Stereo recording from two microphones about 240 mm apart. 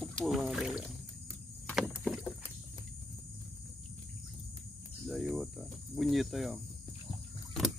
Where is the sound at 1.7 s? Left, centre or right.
Centre.